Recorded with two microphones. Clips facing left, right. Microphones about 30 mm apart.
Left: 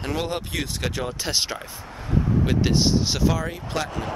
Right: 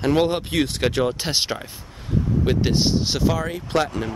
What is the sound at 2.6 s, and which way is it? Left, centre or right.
Speech, centre.